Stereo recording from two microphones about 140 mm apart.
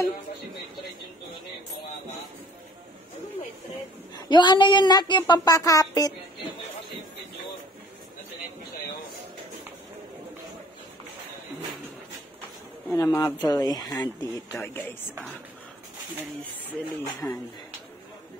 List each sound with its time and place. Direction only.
4.1 s speech: 35° left (ahead or behind)
12.9 s speech: 25° left (ahead or behind)
17.2 s speech: 15° left (ahead or behind)